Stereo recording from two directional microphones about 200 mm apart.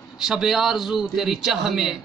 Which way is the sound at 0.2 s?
Centre (ahead or behind).